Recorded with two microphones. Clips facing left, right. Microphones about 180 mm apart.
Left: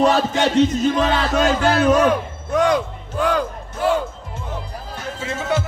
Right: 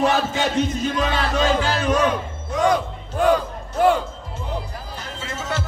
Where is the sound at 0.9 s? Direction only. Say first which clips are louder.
Left 3 dB; 55° left (ahead or behind).